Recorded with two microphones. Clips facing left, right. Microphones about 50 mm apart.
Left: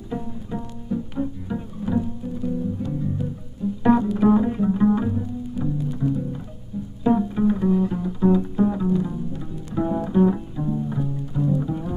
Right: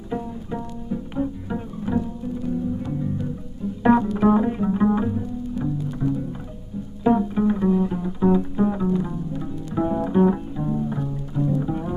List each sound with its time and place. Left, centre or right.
0.1 s bowed string instrument: centre
2.8 s music: centre
4.2 s bowed string instrument: centre
5.9 s music: centre
11.0 s music: centre